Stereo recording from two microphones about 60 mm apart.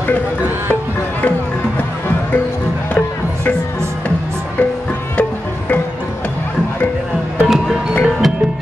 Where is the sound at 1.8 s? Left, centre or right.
Left.